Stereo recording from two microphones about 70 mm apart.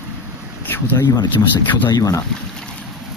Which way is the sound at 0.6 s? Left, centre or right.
Left.